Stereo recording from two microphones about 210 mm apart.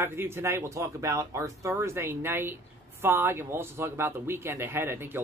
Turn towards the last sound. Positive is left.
turn(degrees=-10)  # may be behind; listen again after turning